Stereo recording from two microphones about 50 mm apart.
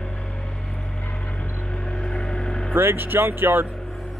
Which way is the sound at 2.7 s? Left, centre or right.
Right.